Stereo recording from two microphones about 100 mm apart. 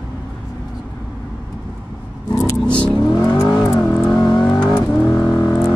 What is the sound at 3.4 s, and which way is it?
Vehicle, 20° left (ahead or behind).